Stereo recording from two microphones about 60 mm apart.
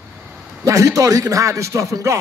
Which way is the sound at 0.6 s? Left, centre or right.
Right.